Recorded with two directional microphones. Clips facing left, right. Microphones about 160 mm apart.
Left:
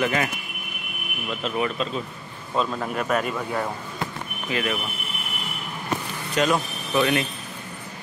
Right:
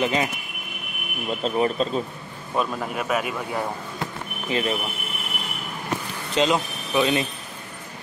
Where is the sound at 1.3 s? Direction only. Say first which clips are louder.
Right 4 dB; 35° right (ahead or behind).